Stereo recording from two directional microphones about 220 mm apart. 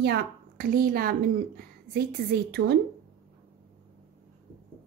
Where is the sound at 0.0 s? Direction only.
45° right (ahead or behind).